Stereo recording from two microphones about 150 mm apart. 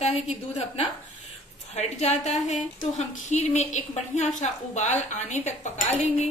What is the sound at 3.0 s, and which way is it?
A woman's voice, 50° left (ahead or behind).